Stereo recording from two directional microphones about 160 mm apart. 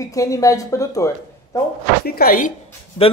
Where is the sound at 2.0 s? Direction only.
70° left (ahead or behind).